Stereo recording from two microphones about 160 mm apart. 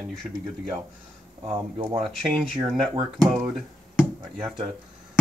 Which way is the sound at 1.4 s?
35° right (ahead or behind).